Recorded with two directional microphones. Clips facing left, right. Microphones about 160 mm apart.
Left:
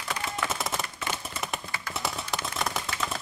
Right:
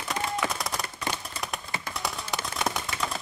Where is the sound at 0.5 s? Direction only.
Centre (ahead or behind).